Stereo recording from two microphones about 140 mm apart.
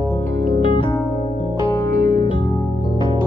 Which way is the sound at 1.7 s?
30° left (ahead or behind).